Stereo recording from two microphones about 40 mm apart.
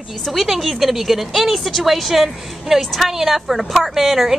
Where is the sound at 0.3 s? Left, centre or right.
Centre.